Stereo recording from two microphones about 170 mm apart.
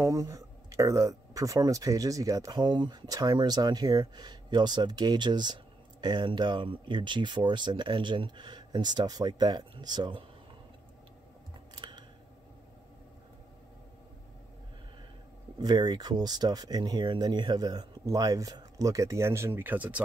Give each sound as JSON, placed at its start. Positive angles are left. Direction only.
{"t": 0.0, "sound": "speech", "side_deg": -20}
{"t": 11.7, "sound": "scissors", "side_deg": -25}
{"t": 15.6, "sound": "speech", "side_deg": -25}